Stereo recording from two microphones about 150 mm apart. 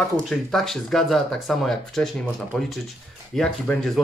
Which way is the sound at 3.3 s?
5° left (ahead or behind).